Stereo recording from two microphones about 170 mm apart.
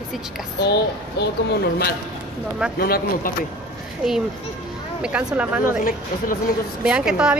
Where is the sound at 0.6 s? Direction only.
75° left (ahead or behind).